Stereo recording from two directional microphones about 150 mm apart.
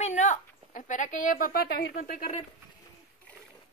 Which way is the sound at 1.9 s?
70° left (ahead or behind).